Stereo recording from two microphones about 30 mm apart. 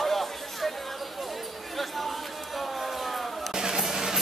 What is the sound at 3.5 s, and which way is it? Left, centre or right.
Music, right.